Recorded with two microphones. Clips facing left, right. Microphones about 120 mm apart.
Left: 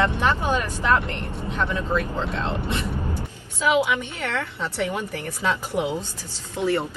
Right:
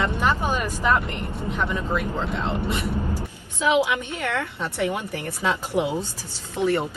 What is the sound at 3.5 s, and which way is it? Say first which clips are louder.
A woman's voice: even; 20° right (ahead or behind).